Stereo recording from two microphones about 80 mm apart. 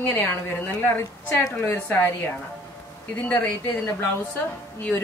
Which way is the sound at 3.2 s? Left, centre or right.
Left.